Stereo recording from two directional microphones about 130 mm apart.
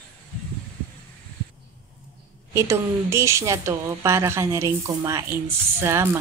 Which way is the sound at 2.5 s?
20° right (ahead or behind).